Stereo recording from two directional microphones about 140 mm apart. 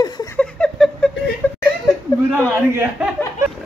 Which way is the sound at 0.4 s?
5° left (ahead or behind).